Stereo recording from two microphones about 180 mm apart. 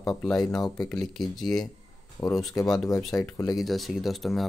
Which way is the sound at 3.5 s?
Centre (ahead or behind).